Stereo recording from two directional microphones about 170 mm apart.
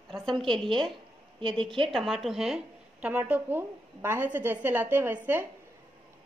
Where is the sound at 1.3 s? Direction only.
30° right (ahead or behind).